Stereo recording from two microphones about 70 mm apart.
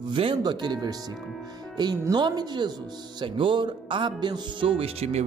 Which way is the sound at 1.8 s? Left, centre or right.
Right.